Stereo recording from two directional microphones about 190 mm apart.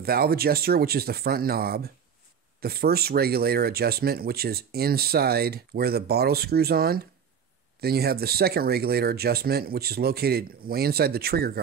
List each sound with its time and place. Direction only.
0.0 s speech: 55° right (ahead or behind)